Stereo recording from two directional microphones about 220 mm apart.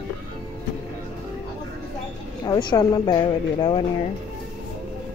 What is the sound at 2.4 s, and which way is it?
A woman's voice, 15° left (ahead or behind).